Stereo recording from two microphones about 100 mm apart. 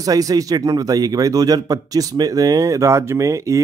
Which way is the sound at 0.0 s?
35° right (ahead or behind).